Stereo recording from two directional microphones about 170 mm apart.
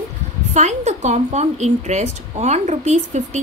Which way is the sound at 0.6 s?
45° right (ahead or behind).